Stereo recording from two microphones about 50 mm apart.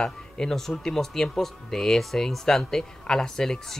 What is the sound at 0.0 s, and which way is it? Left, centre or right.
Speech, centre.